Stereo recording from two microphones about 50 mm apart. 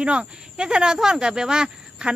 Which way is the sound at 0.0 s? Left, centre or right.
Right.